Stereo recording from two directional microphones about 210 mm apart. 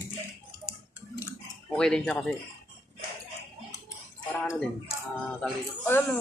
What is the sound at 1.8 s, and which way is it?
Speech, 5° left (ahead or behind).